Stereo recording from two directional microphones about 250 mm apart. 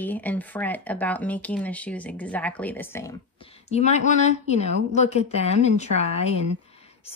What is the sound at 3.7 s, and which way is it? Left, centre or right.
A woman's voice, left.